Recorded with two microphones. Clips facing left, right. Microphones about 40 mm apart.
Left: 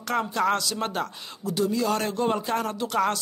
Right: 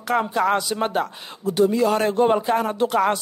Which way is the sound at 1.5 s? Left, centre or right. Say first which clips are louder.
Right 7 dB; right.